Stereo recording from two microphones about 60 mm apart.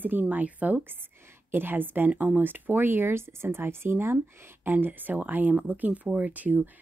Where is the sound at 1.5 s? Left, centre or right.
Right.